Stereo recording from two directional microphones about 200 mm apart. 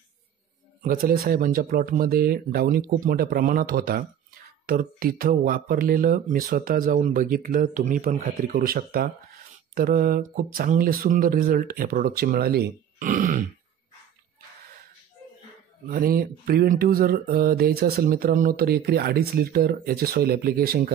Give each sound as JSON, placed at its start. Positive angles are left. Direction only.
{"t": 0.8, "sound": "speech", "side_deg": -45}
{"t": 15.9, "sound": "speech", "side_deg": -45}